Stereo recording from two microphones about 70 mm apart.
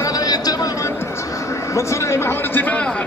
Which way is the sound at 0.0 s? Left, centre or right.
Left.